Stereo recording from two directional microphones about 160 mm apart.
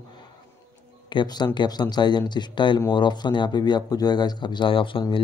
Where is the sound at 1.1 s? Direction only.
30° left (ahead or behind).